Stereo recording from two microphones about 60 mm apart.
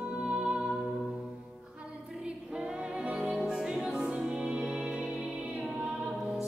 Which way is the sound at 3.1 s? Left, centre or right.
Centre.